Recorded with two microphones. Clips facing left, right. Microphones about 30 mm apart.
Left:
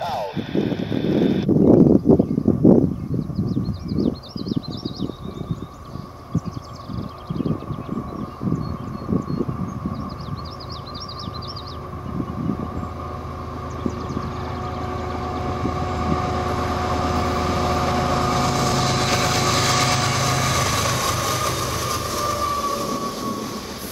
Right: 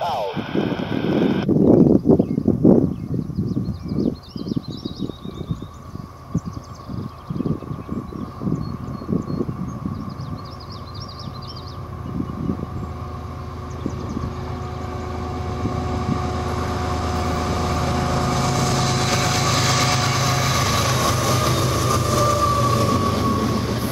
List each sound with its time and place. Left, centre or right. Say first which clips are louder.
0.3 s a sound: even; centre
12.2 s vehicle: even; centre
13.9 s vehicle: left 1 dB; centre
21.5 s vehicle: right 3 dB; right
21.7 s train: right 5 dB; right
23.4 s vehicle: right 8 dB; right